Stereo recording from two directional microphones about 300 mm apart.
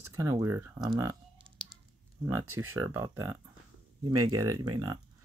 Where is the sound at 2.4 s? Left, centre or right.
Right.